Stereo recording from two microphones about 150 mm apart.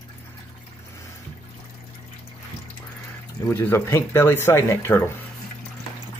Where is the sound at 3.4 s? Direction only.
15° left (ahead or behind).